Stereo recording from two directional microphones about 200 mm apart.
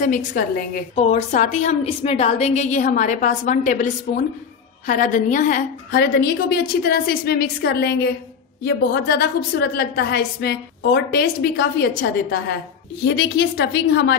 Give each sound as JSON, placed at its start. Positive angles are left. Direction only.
{"t": 0.0, "sound": "a woman's voice", "side_deg": 40}